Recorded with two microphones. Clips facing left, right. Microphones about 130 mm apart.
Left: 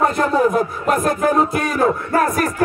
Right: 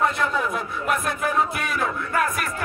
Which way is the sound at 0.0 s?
40° left (ahead or behind).